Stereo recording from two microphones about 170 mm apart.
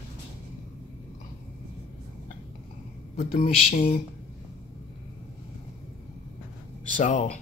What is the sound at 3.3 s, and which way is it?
Speech, 35° left (ahead or behind).